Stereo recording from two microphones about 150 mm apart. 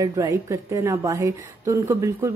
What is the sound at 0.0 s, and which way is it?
A woman's voice, 25° right (ahead or behind).